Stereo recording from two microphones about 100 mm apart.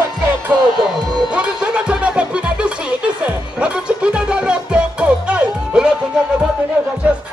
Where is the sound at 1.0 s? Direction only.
45° right (ahead or behind).